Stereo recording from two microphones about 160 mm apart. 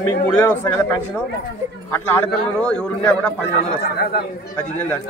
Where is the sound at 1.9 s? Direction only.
15° left (ahead or behind).